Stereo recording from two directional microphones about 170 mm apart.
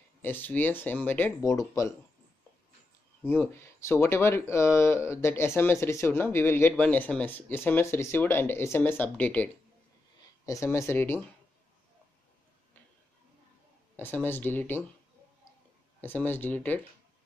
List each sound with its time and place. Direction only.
0.2 s speech: 10° left (ahead or behind)
3.3 s speech: 10° left (ahead or behind)
13.9 s speech: 10° left (ahead or behind)
16.0 s speech: 10° left (ahead or behind)